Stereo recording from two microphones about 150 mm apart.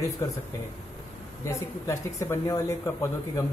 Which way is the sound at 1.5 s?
20° left (ahead or behind).